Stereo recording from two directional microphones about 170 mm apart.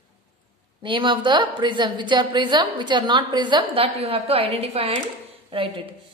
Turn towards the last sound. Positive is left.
turn(degrees=-30)  # may be behind; listen again after turning